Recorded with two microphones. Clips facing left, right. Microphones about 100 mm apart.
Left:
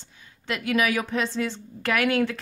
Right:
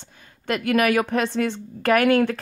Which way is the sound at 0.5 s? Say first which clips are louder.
Right 4 dB; 55° right (ahead or behind).